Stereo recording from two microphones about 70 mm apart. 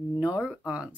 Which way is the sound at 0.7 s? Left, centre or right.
Centre.